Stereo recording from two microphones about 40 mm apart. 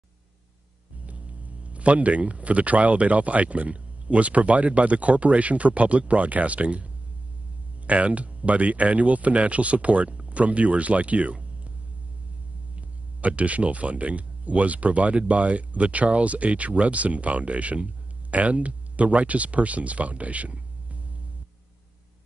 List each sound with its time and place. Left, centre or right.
1.6 s speech: right
12.7 s speech: right